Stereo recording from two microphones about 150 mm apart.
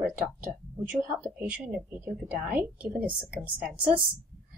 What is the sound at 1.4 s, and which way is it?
A woman's voice, 10° right (ahead or behind).